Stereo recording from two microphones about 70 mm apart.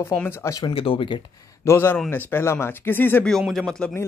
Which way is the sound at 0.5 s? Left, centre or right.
Left.